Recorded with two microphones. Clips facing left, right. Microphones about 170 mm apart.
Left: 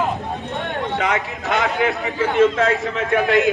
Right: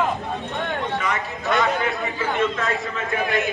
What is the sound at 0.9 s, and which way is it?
Speech, 80° left.